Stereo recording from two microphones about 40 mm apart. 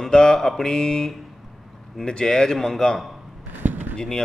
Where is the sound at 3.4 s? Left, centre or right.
Right.